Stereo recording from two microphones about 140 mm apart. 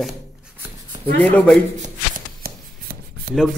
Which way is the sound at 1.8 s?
80° right.